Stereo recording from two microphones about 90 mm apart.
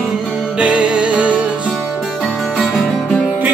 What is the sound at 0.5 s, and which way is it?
Music, 10° right (ahead or behind).